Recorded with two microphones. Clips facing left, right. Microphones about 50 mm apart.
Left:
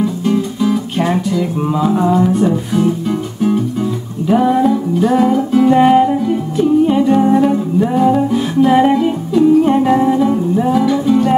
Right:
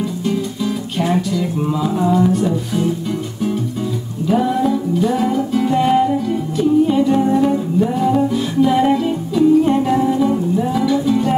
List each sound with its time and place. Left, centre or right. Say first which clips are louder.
0.0 s music: left 5 dB; centre
4.3 s music: left 4 dB; centre